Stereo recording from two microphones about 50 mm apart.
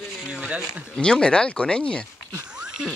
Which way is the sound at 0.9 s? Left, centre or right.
Centre.